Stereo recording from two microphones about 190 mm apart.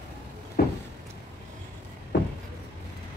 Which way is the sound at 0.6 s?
50° left (ahead or behind).